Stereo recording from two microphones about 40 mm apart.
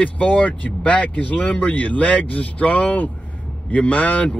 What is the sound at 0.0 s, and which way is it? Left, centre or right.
Speech, left.